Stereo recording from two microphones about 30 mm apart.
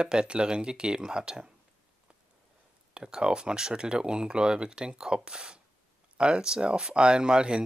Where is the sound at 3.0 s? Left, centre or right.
Right.